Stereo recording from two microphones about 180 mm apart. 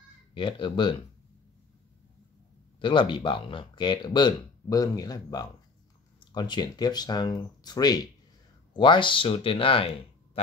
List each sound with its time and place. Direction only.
0.3 s speech: 25° left (ahead or behind)
2.8 s speech: 25° left (ahead or behind)